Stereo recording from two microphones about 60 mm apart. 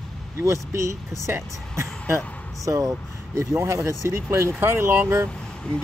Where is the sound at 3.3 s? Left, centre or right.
Right.